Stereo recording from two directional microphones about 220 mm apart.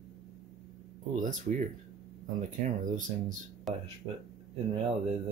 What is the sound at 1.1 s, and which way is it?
Speech, 35° right (ahead or behind).